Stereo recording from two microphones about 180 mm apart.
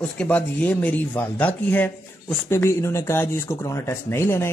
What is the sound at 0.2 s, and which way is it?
Speech, 5° left (ahead or behind).